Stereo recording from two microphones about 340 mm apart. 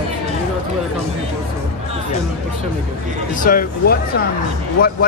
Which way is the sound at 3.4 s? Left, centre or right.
Left.